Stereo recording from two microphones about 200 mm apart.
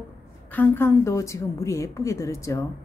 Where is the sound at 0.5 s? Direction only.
10° left (ahead or behind).